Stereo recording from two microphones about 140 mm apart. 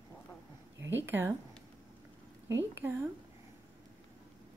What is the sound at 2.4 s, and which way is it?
Speech, 15° right (ahead or behind).